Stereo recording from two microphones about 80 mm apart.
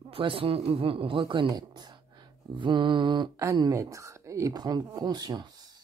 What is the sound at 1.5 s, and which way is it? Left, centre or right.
Speech, right.